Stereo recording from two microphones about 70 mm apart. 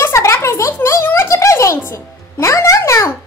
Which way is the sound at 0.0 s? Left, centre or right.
Left.